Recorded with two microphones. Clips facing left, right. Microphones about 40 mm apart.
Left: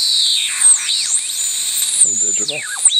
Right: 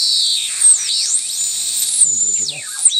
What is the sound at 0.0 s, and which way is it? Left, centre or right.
Music, left.